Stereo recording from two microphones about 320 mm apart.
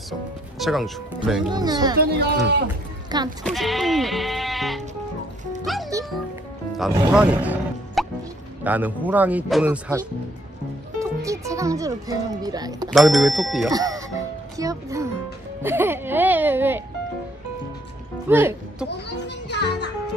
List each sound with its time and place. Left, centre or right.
0.6 s speech: centre
1.5 s speech: centre
2.1 s speech: right
3.1 s speech: centre
3.4 s speech: centre
5.7 s music: centre
6.8 s speech: centre
11.0 s a child's voice: centre
12.9 s speech: centre
14.6 s music: centre
18.3 s speech: centre
18.9 s children playing: left